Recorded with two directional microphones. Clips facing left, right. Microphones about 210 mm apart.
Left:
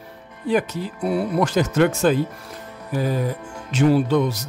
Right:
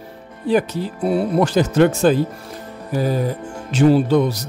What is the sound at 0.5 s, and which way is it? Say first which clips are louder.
Speech: right 3 dB; 30° right (ahead or behind).